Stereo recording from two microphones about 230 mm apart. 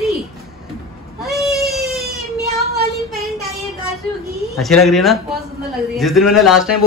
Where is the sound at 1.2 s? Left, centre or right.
Centre.